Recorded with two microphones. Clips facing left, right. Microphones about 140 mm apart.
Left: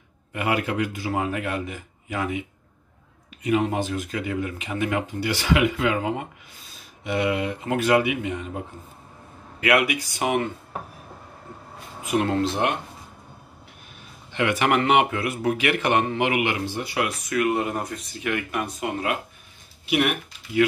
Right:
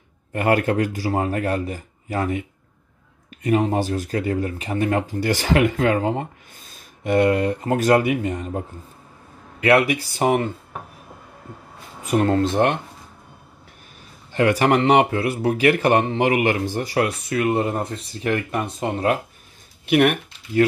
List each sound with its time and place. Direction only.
0.3 s speech: 45° right (ahead or behind)
3.4 s speech: 40° right (ahead or behind)
7.0 s speech: 45° right (ahead or behind)
9.6 s speech: 30° right (ahead or behind)
12.0 s speech: 40° right (ahead or behind)
14.3 s speech: 35° right (ahead or behind)
19.9 s speech: 50° right (ahead or behind)